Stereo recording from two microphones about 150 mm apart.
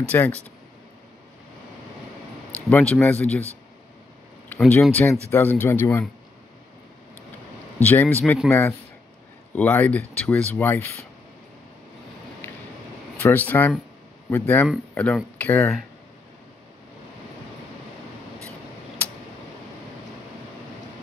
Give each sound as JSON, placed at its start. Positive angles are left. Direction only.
{"t": 0.1, "sound": "speech", "side_deg": 15}
{"t": 2.7, "sound": "speech", "side_deg": 10}
{"t": 4.5, "sound": "speech", "side_deg": 10}
{"t": 7.8, "sound": "speech", "side_deg": 10}
{"t": 13.2, "sound": "speech", "side_deg": 10}